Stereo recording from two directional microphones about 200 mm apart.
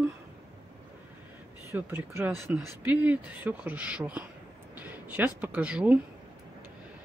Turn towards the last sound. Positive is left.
turn(degrees=-5)  # may be behind; listen again after turning